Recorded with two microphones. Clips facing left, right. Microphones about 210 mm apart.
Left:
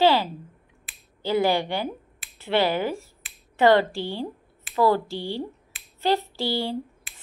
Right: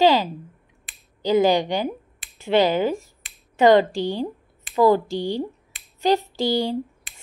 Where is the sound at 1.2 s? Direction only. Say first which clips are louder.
Right 4 dB; 20° right (ahead or behind).